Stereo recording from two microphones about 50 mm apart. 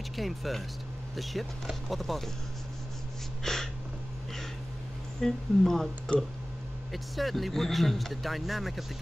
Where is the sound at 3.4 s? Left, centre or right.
Centre.